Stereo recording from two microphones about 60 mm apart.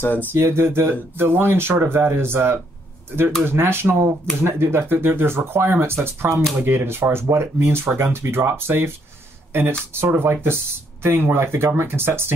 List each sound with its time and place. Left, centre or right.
0.0 s speech: left
0.3 s speech: right